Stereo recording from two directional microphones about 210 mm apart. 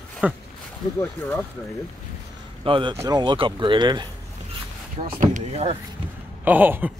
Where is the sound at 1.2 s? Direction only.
10° left (ahead or behind).